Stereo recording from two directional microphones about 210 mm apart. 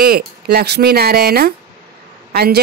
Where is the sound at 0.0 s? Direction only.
50° right (ahead or behind).